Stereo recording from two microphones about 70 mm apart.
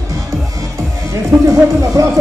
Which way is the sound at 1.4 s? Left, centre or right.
Right.